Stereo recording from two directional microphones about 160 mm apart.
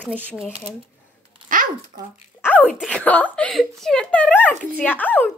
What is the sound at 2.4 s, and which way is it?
Speech, 10° left (ahead or behind).